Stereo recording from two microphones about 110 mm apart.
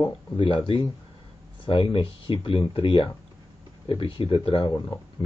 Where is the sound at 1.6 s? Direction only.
55° left (ahead or behind).